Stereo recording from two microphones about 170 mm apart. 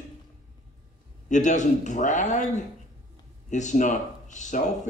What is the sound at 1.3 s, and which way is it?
Speech, 45° left (ahead or behind).